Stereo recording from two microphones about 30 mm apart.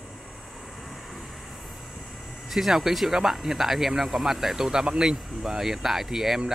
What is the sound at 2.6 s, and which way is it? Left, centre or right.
Speech, right.